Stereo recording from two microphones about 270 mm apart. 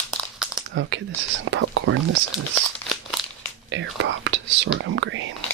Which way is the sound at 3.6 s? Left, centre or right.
Right.